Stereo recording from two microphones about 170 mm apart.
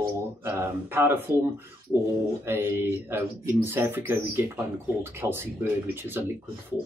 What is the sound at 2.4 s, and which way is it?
Speech, 15° right (ahead or behind).